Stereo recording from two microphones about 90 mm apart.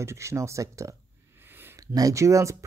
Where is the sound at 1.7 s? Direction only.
40° right (ahead or behind).